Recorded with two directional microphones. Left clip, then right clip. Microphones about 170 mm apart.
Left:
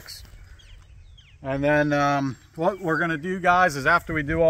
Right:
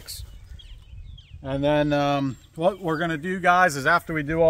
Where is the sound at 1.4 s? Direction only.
15° right (ahead or behind).